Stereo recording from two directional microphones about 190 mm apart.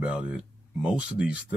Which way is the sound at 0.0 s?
5° right (ahead or behind).